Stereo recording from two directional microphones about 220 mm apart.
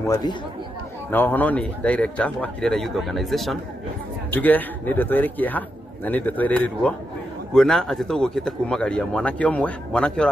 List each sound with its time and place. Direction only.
0.0 s a man's voice: 15° left (ahead or behind)